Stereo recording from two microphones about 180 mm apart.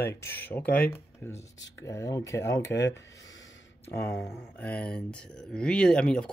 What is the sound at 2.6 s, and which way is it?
Speech, 75° left (ahead or behind).